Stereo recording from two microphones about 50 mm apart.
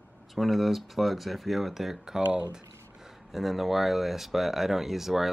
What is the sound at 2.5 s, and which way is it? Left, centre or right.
Speech, centre.